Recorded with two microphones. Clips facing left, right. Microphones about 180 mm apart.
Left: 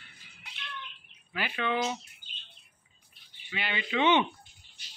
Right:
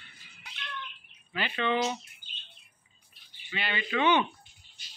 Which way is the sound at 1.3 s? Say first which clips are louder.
Right 2 dB; 5° left (ahead or behind).